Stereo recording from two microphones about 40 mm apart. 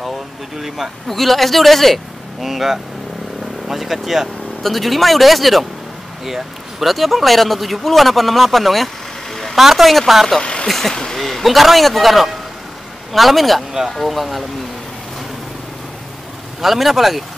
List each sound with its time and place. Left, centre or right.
1.0 s a man's voice: centre
9.6 s a man's voice: centre
10.4 s vehicle: left
10.7 s a man's voice: centre
16.6 s a man's voice: centre